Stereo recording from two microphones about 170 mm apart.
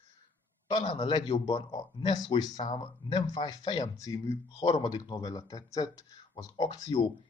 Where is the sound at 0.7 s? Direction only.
25° left (ahead or behind).